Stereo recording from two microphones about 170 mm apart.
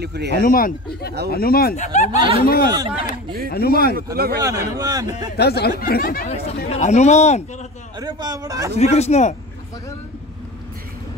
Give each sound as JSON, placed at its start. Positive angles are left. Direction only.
{"t": 0.0, "sound": "speech", "side_deg": -75}
{"t": 0.4, "sound": "speech", "side_deg": 55}
{"t": 1.8, "sound": "speech", "side_deg": 45}
{"t": 2.1, "sound": "speech", "side_deg": -30}
{"t": 2.4, "sound": "speech", "side_deg": 60}
{"t": 2.7, "sound": "a man's voice", "side_deg": -25}
{"t": 3.5, "sound": "speech", "side_deg": 65}
{"t": 4.4, "sound": "a man's voice", "side_deg": -20}
{"t": 5.4, "sound": "speech", "side_deg": 70}
{"t": 6.2, "sound": "speech", "side_deg": 35}
{"t": 8.0, "sound": "a man's voice", "side_deg": -25}
{"t": 8.7, "sound": "speech", "side_deg": 40}